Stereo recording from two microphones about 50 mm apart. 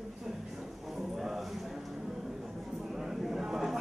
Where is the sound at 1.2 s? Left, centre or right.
Centre.